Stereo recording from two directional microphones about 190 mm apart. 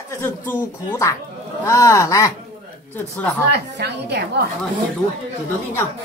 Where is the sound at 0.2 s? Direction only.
15° left (ahead or behind).